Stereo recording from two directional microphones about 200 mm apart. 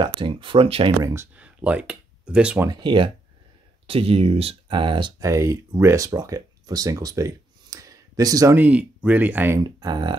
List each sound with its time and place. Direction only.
0.0 s speech: 25° right (ahead or behind)
1.0 s speech: 10° right (ahead or behind)
2.7 s speech: 25° right (ahead or behind)
9.6 s speech: 20° right (ahead or behind)